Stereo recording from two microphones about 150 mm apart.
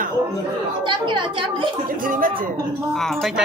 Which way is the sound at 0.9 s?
35° right (ahead or behind).